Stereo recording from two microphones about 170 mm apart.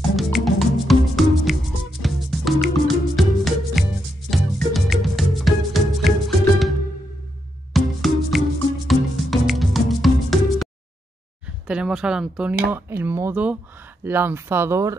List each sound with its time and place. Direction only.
0.1 s music: centre (ahead or behind)
7.7 s music: centre (ahead or behind)
11.6 s speech: 5° right (ahead or behind)